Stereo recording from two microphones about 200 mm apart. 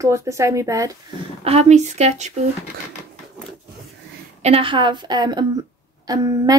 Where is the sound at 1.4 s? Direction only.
35° right (ahead or behind).